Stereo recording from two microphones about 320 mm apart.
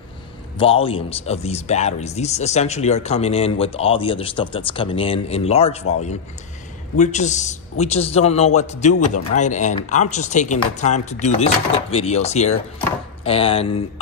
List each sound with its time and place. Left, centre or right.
0.6 s a man's voice: centre
7.0 s a man's voice: left
8.9 s speech: left
9.3 s a man's voice: left